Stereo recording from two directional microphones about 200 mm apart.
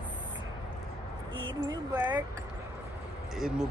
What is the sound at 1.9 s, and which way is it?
Speech, 10° right (ahead or behind).